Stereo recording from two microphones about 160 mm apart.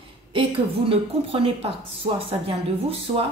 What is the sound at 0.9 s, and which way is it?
Speech, 35° right (ahead or behind).